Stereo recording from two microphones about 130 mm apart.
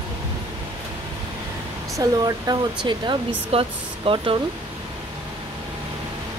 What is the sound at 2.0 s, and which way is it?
Speech, 30° right (ahead or behind).